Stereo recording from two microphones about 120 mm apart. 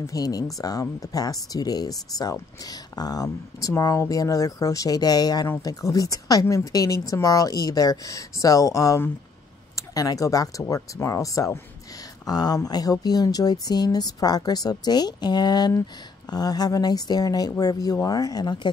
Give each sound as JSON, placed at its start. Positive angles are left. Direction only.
{"t": 0.0, "sound": "a woman's voice", "side_deg": 30}